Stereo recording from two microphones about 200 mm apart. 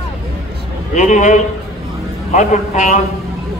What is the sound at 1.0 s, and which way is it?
Speech, 35° left (ahead or behind).